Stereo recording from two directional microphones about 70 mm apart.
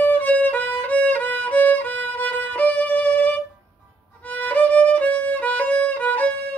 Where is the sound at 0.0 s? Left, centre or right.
Left.